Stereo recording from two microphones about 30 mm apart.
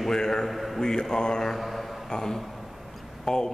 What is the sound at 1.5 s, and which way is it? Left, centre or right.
Speech, centre.